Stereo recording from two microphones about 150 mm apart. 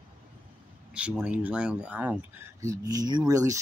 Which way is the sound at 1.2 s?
5° right (ahead or behind).